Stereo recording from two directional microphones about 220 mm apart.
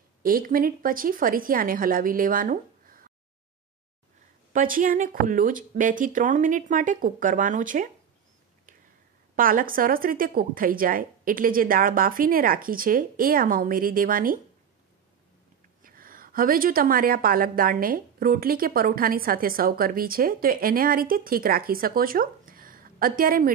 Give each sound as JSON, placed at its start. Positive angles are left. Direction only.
{"t": 0.2, "sound": "a woman's voice", "side_deg": -40}
{"t": 4.5, "sound": "a woman's voice", "side_deg": -40}
{"t": 9.3, "sound": "a woman's voice", "side_deg": -40}
{"t": 15.8, "sound": "a woman's voice", "side_deg": -40}